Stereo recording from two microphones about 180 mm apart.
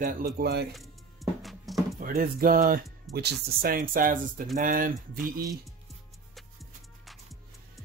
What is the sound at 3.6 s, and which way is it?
Speech, 50° right (ahead or behind).